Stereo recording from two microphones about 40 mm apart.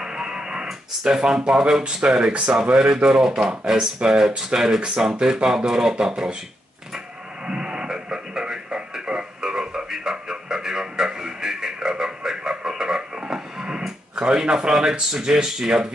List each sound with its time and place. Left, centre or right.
0.0 s radio: centre
1.0 s speech: centre
7.4 s a sound: right
13.8 s speech: centre